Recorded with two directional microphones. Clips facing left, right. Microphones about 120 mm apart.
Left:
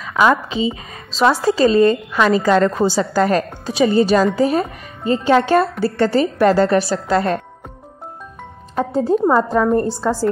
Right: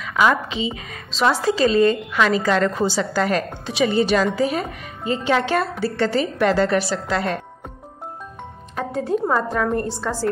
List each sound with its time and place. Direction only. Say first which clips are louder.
0.0 s a woman's voice: left 3 dB; 35° left (ahead or behind)
8.7 s a woman's voice: left 6 dB; 30° left (ahead or behind)
9.8 s a woman's voice: left 5 dB; centre (ahead or behind)